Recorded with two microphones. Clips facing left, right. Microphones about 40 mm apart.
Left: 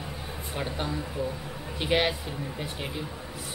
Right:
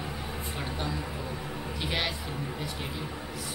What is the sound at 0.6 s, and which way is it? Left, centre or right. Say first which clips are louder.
Speech: left 3 dB; centre.